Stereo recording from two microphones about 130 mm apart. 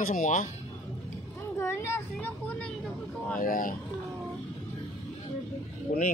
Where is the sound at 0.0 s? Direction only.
90° left.